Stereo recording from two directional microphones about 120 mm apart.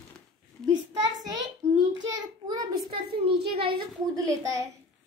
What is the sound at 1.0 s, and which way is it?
A child's voice, 35° right (ahead or behind).